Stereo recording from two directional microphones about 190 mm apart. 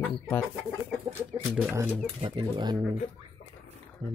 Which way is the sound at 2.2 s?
25° right (ahead or behind).